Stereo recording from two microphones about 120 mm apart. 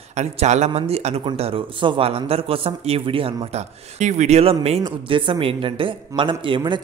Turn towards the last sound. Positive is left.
turn(degrees=-40)  # may be behind; listen again after turning